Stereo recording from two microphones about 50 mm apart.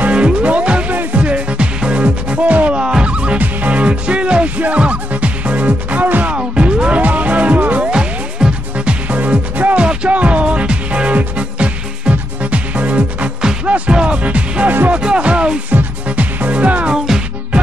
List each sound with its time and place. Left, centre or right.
0.1 s music: right
2.8 s music: centre; by 6.3 s right
6.3 s music: right
7.9 s music: centre